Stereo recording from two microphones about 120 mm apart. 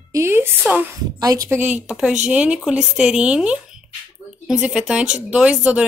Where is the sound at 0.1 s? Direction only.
20° right (ahead or behind).